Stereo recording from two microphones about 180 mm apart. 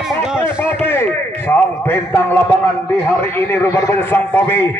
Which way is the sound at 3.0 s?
15° left (ahead or behind).